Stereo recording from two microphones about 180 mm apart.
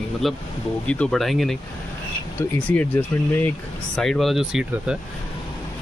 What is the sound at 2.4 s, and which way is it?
Speech, 15° left (ahead or behind).